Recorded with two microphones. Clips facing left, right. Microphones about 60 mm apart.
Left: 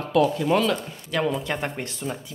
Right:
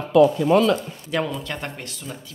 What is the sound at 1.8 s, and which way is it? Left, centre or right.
Speech, left.